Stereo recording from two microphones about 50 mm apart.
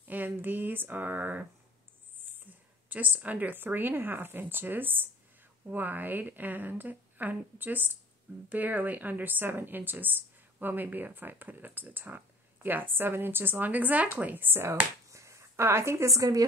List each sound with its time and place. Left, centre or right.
0.1 s a woman's voice: right
15.0 s finger snapping: right
15.6 s a woman's voice: right